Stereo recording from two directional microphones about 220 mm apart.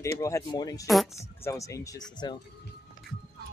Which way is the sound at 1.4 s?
15° left (ahead or behind).